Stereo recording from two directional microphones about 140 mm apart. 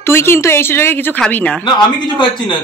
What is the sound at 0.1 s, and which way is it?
Speech, 15° left (ahead or behind).